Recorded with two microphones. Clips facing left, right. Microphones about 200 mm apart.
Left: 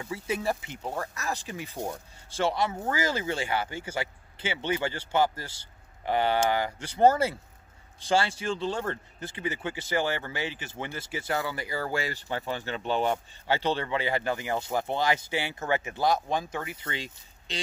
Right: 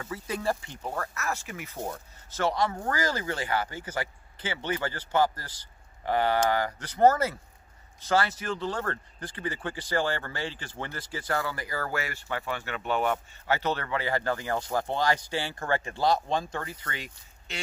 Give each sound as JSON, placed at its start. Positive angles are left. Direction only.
{"t": 0.0, "sound": "speech", "side_deg": 10}
{"t": 1.4, "sound": "speech", "side_deg": 30}